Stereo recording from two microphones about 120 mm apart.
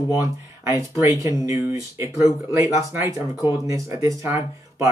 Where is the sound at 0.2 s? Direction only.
25° right (ahead or behind).